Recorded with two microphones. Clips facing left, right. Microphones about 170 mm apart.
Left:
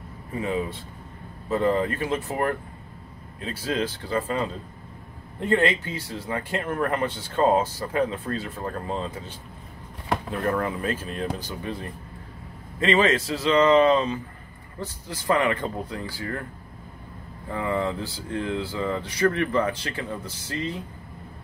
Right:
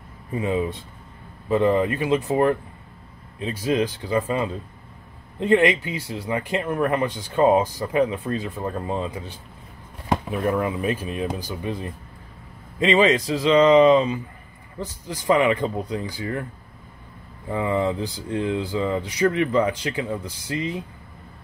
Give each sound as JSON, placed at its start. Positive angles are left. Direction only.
{"t": 0.3, "sound": "speech", "side_deg": -20}
{"t": 17.5, "sound": "speech", "side_deg": -15}